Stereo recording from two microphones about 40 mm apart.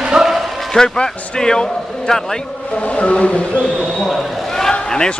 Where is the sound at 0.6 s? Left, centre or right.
Centre.